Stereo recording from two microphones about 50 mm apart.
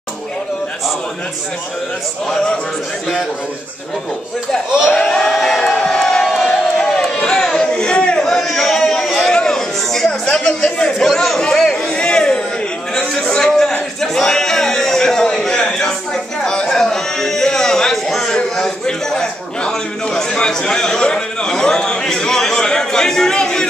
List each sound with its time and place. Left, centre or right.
2.2 s a man's voice: centre
4.6 s speech: centre
4.9 s a man's voice: centre
5.9 s crowd: centre
6.2 s a sound: centre
9.3 s chatter: centre
12.9 s a man's voice: centre
14.0 s a sound: centre
20.3 s a man's voice: centre